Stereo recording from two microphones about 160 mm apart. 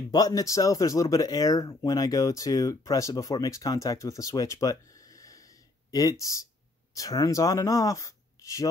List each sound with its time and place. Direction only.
0.1 s speech: 25° left (ahead or behind)